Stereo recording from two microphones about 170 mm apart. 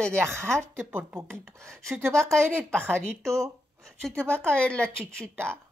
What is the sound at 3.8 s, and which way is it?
A woman's voice, 5° left (ahead or behind).